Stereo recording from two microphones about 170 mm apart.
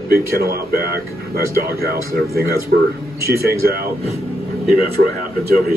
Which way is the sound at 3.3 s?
65° right (ahead or behind).